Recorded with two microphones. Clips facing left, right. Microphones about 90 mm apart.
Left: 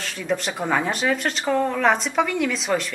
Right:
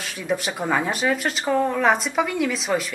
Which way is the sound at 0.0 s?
5° right (ahead or behind).